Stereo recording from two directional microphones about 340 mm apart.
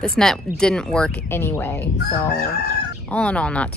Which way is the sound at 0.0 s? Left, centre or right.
Centre.